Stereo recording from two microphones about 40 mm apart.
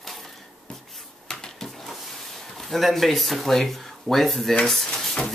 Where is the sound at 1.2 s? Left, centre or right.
Centre.